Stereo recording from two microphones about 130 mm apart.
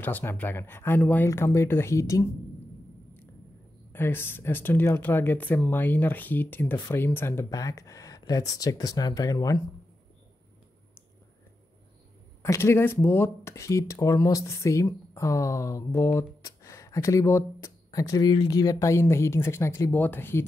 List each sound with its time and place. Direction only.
0.0 s speech: 15° left (ahead or behind)
3.9 s speech: 15° left (ahead or behind)
12.4 s speech: 20° left (ahead or behind)